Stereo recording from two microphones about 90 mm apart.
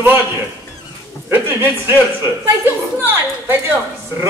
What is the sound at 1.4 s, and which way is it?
A man's voice, 25° right (ahead or behind).